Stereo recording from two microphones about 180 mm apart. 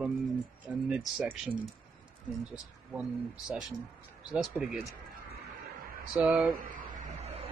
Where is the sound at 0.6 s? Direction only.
5° right (ahead or behind).